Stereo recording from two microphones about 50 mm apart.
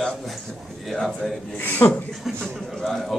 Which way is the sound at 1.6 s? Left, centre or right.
Left.